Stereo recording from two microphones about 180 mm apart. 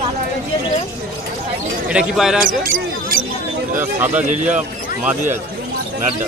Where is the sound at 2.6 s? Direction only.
50° right (ahead or behind).